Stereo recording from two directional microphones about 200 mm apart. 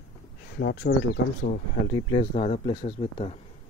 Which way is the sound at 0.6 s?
55° left (ahead or behind).